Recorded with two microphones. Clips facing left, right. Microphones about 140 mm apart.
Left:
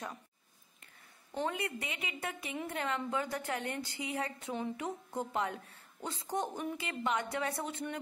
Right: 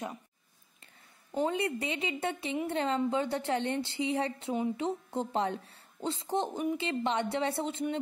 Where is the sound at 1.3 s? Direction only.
25° right (ahead or behind).